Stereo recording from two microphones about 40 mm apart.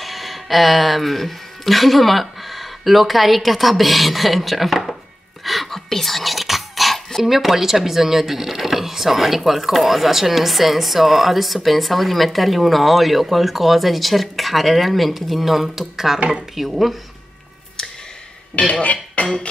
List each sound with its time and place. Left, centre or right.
0.0 s speech: centre
5.4 s whispering: centre
7.2 s speech: centre
18.6 s speech: left